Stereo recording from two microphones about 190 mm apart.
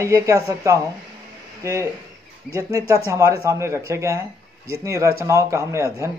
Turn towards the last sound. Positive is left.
turn(degrees=-15)  # may be behind; listen again after turning